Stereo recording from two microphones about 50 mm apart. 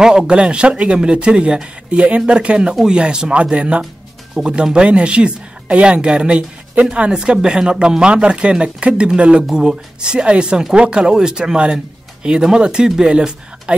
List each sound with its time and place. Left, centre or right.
0.0 s a woman's voice: centre